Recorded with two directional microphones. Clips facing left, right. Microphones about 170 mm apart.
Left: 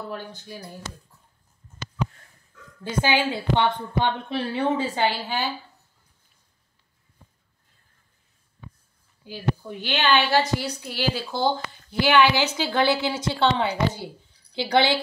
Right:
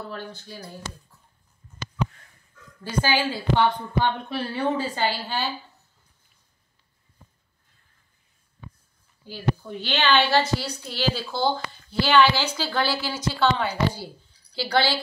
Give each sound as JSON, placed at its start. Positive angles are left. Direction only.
{"t": 0.1, "sound": "a woman's voice", "side_deg": 15}
{"t": 2.8, "sound": "a woman's voice", "side_deg": 20}
{"t": 9.2, "sound": "a woman's voice", "side_deg": 10}